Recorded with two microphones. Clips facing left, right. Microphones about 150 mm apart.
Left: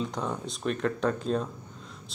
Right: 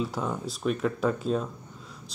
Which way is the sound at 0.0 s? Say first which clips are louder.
Right 2 dB; 5° right (ahead or behind).